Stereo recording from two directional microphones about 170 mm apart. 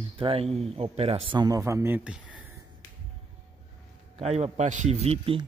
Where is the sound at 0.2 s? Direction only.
35° right (ahead or behind); by 2.5 s 5° right (ahead or behind).